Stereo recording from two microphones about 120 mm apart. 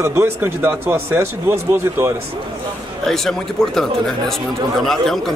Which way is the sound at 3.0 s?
5° left (ahead or behind).